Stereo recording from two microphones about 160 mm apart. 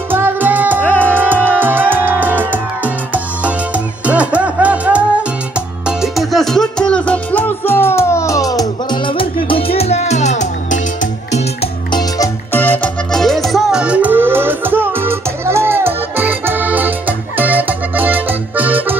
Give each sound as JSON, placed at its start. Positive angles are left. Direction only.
{"t": 0.1, "sound": "music", "side_deg": -10}
{"t": 0.8, "sound": "music", "side_deg": 10}
{"t": 1.1, "sound": "music", "side_deg": -10}
{"t": 12.5, "sound": "music", "side_deg": 10}